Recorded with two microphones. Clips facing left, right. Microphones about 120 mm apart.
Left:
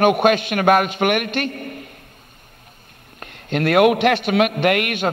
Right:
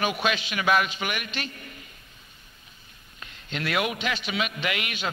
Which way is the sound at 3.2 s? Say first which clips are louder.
Left 11 dB; 55° left (ahead or behind).